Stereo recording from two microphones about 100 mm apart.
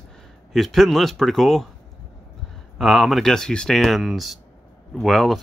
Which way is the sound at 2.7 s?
Centre (ahead or behind).